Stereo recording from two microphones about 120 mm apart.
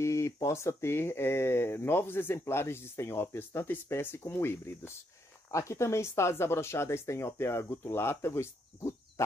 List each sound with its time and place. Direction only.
0.0 s speech: 25° left (ahead or behind)